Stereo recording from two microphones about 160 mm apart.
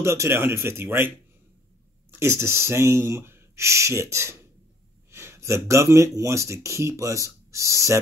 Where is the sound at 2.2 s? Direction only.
15° right (ahead or behind).